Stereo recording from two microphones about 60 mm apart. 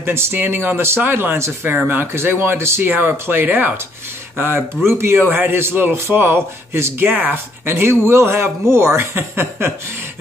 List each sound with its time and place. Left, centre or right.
0.0 s a man's voice: right